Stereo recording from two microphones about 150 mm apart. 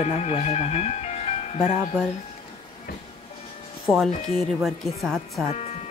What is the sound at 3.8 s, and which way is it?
Speech, centre (ahead or behind).